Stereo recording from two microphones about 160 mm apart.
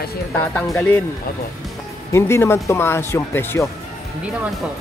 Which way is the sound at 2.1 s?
15° left (ahead or behind).